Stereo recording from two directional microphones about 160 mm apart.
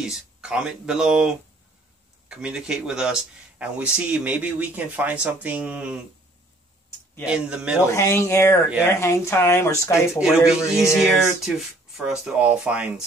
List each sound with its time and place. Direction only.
0.0 s speech: 5° right (ahead or behind)
7.2 s speech: 5° right (ahead or behind)
7.9 s speech: 15° left (ahead or behind)
10.1 s speech: 5° right (ahead or behind)
10.6 s music: 20° left (ahead or behind)
11.0 s speech: 5° right (ahead or behind)